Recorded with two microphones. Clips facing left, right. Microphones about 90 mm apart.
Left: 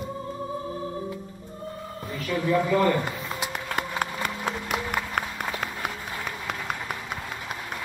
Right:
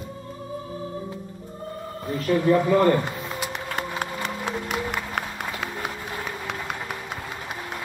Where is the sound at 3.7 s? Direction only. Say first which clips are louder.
Left 2 dB; 45° left (ahead or behind).